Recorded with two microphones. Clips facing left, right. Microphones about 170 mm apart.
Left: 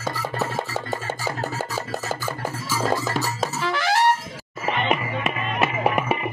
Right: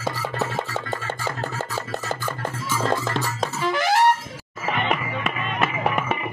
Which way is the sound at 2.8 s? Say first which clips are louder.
Left 1 dB; 5° left (ahead or behind).